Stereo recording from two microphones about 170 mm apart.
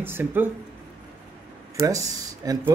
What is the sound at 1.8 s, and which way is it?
Speech, 20° right (ahead or behind).